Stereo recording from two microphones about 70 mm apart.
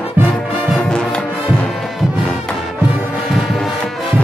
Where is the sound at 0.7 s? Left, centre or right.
Centre.